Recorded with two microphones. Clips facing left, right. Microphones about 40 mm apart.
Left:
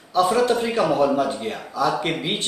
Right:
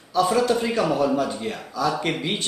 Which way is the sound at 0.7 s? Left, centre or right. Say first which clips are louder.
Left 2 dB; centre.